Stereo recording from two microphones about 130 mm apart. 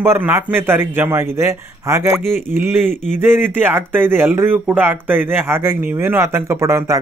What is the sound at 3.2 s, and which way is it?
Speech, 15° right (ahead or behind).